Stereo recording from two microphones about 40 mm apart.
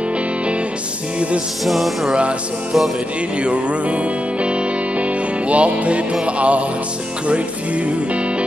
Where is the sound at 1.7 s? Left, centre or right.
Centre.